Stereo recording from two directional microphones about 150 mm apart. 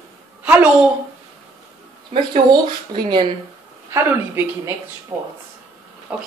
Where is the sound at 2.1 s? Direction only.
30° right (ahead or behind).